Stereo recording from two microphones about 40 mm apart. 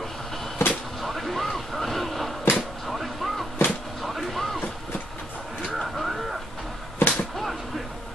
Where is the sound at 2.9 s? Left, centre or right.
Centre.